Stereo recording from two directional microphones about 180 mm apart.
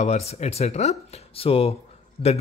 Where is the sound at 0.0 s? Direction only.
35° left (ahead or behind).